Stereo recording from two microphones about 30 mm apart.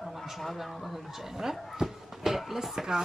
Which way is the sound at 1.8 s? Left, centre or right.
Centre.